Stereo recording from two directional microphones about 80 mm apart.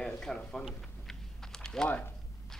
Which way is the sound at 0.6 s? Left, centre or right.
Centre.